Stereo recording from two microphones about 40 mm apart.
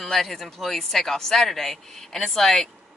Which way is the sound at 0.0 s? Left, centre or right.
Centre.